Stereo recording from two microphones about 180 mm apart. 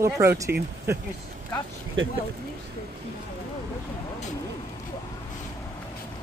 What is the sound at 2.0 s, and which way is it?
Speech, 90° right.